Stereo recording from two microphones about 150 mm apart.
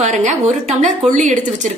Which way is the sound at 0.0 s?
55° right (ahead or behind).